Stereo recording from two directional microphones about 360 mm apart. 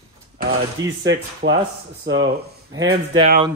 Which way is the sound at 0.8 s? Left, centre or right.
Centre.